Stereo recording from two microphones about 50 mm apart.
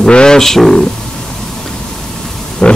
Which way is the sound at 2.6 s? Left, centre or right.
Centre.